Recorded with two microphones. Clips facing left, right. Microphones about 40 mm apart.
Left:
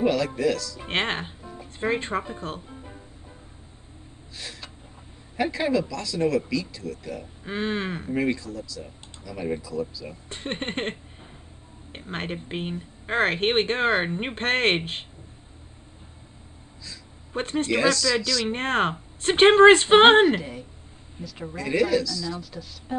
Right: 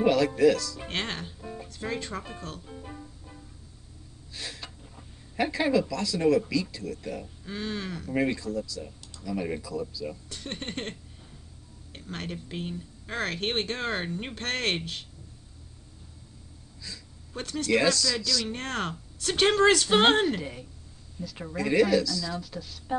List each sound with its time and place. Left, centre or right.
0.0 s speech: centre
0.8 s speech: left
4.4 s gasp: centre
5.3 s speech: centre
7.4 s speech: left
8.1 s speech: centre
10.3 s speech: left
17.3 s speech: left
17.7 s speech: centre
18.0 s speech: left
18.4 s speech: left
21.3 s speech: centre